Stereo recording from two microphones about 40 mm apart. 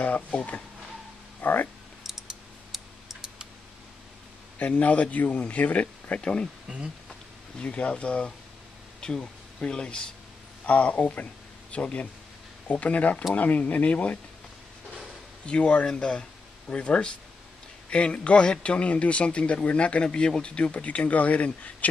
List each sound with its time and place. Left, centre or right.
1.4 s speech: left
2.7 s tick-tock: centre
4.6 s speech: left
6.2 s speech: left
7.5 s speech: left
10.6 s speech: left
15.4 s speech: left